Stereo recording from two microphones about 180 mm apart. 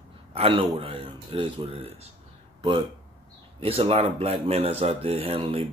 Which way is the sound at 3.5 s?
35° right (ahead or behind).